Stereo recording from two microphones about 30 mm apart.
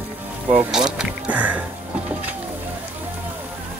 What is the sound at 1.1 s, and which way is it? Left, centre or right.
Music, right.